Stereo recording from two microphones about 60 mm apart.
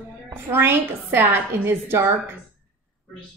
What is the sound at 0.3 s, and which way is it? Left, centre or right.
A woman's voice, right.